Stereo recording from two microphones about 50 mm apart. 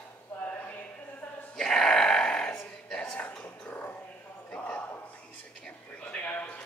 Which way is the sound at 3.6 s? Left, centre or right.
Left.